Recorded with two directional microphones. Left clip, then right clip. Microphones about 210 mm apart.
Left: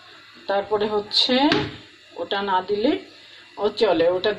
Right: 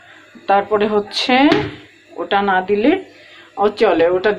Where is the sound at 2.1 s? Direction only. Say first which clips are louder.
Right 7 dB; 15° right (ahead or behind).